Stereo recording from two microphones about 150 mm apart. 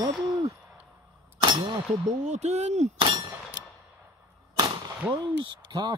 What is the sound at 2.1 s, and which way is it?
Speech, 50° right (ahead or behind).